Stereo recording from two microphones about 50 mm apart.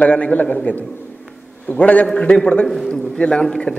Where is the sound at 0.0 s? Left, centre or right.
Left.